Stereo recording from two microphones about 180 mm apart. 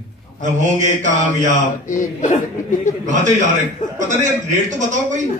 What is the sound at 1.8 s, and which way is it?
Speech, 45° left (ahead or behind).